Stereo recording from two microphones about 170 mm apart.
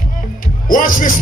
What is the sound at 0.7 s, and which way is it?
Music, 50° left (ahead or behind).